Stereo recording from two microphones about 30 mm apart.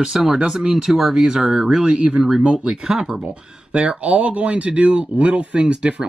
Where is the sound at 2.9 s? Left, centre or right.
Centre.